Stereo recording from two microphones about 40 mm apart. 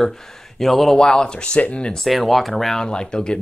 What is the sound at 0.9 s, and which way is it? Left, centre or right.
Speech, centre.